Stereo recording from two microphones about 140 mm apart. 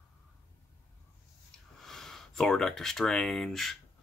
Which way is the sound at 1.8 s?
Centre (ahead or behind).